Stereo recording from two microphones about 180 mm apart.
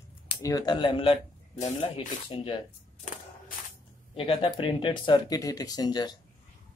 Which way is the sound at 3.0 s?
45° left (ahead or behind).